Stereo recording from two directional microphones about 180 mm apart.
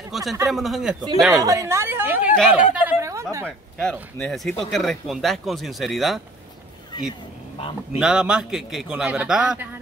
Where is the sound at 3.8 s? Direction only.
5° left (ahead or behind).